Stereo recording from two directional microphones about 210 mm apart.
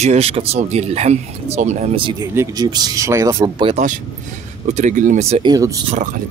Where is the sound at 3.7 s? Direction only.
35° right (ahead or behind).